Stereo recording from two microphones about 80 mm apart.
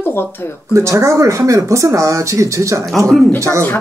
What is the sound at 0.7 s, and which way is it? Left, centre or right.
Speech, right.